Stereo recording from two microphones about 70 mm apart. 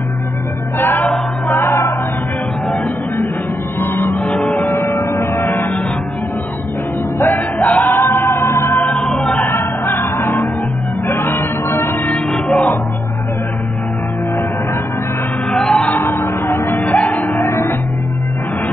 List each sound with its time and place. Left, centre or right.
0.7 s music: left
3.8 s music: left
4.2 s music: centre
4.9 s a sound: left
7.2 s music: left
8.8 s music: centre
9.5 s music: left
12.1 s music: centre
15.5 s music: centre
16.1 s music: left
16.8 s music: centre
17.5 s music: left